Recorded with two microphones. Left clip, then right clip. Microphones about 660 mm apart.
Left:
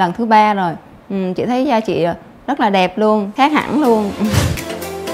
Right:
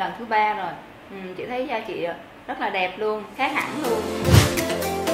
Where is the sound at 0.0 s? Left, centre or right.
Left.